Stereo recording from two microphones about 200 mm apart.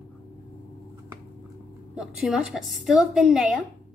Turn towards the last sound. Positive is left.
turn(degrees=-5)  # may be behind; listen again after turning